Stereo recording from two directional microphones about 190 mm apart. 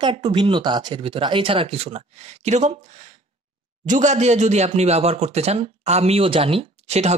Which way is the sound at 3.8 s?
40° right (ahead or behind).